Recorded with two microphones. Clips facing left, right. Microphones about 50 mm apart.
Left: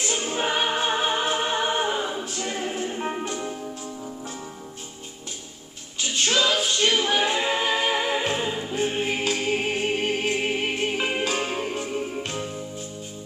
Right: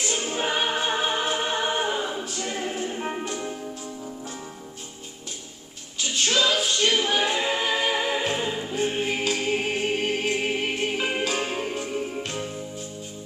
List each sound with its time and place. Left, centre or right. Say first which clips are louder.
0.2 s choir: left 2 dB; centre
2.3 s music: left 1 dB; centre
6.3 s music: even; centre
7.2 s a capella: left 1 dB; centre
8.3 s music: left 1 dB; centre